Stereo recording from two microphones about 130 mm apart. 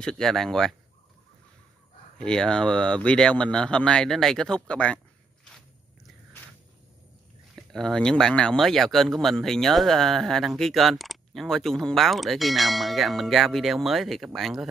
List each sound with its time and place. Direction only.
0.0 s speech: 5° left (ahead or behind)
2.1 s speech: 5° left (ahead or behind)
7.5 s speech: 5° left (ahead or behind)